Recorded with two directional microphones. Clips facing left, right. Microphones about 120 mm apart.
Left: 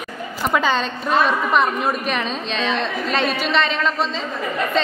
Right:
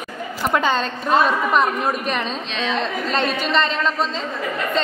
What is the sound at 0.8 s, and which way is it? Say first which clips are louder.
Speech: right 1 dB; 35° right (ahead or behind).